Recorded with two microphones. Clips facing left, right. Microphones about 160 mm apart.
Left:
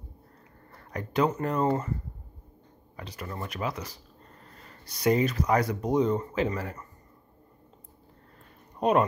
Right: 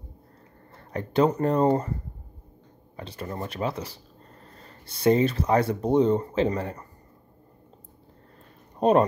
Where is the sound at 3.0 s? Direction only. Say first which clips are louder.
Right 4 dB; 30° right (ahead or behind).